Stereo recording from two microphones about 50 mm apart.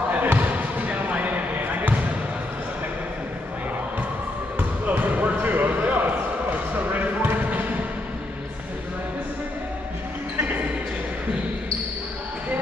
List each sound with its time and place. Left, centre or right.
0.1 s basketball bounce: right
4.6 s basketball bounce: right